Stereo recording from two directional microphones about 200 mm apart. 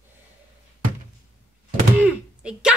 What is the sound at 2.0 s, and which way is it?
Speech, 5° right (ahead or behind).